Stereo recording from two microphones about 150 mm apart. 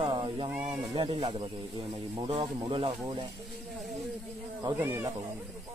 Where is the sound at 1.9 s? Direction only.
30° right (ahead or behind).